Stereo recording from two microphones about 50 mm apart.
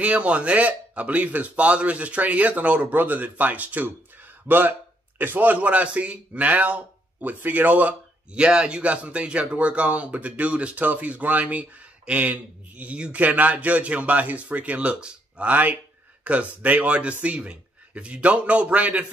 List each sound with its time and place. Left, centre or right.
0.0 s a man's voice: right
8.3 s a man's voice: centre
15.4 s a man's voice: right